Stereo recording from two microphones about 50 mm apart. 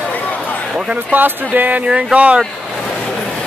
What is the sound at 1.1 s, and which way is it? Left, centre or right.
Speech, right.